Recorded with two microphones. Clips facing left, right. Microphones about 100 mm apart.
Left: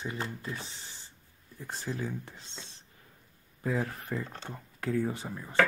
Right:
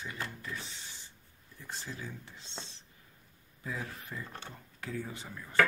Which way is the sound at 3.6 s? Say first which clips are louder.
Left 8 dB; 50° left (ahead or behind).